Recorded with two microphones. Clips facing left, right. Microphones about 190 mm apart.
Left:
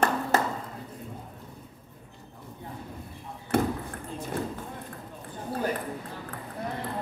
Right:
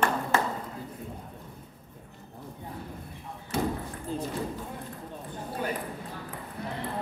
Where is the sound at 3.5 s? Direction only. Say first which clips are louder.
Left 4 dB; 60° left (ahead or behind).